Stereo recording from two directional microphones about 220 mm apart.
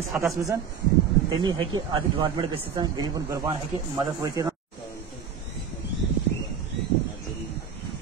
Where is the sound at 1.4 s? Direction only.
20° right (ahead or behind).